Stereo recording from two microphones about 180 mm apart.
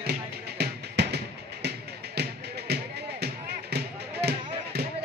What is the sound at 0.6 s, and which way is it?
Music, 65° right (ahead or behind).